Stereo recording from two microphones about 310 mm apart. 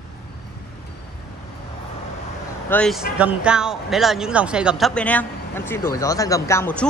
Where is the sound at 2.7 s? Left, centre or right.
Centre.